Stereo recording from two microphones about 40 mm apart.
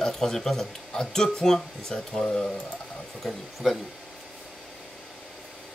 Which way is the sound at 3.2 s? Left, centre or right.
Centre.